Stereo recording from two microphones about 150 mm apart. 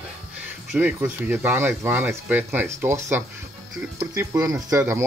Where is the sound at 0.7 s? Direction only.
15° right (ahead or behind).